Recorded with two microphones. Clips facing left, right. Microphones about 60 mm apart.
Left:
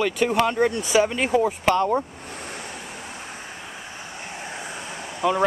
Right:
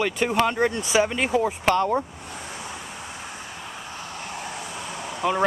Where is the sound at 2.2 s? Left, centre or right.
Left.